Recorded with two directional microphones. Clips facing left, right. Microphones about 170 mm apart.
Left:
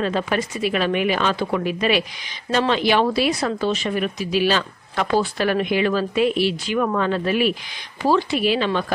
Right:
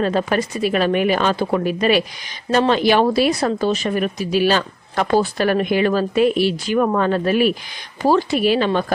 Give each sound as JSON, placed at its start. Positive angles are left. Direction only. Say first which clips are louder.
{"t": 0.0, "sound": "speech", "louder": "right 3 dB", "side_deg": -40}